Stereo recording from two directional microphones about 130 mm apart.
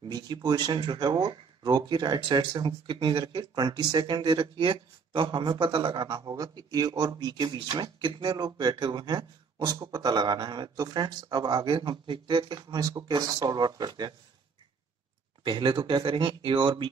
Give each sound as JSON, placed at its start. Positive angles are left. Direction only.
{"t": 0.0, "sound": "speech", "side_deg": -30}
{"t": 15.4, "sound": "speech", "side_deg": -40}